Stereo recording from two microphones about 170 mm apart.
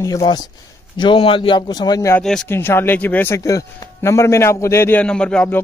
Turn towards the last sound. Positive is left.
turn(degrees=5)  # may be behind; listen again after turning